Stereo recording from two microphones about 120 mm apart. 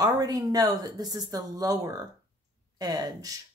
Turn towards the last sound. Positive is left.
turn(degrees=-30)  # may be behind; listen again after turning